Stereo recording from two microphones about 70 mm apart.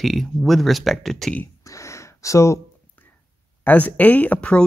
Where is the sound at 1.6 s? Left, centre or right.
Left.